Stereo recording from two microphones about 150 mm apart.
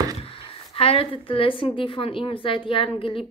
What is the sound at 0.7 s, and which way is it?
A woman's voice, 40° left (ahead or behind).